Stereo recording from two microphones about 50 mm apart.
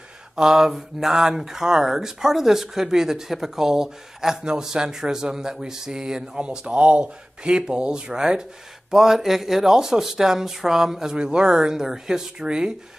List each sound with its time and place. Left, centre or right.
0.4 s speech: centre